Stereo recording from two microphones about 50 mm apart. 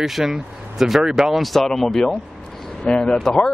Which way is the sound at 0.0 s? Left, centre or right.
Centre.